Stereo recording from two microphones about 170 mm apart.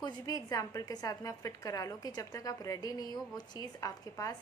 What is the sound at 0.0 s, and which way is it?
A woman's voice, 20° left (ahead or behind).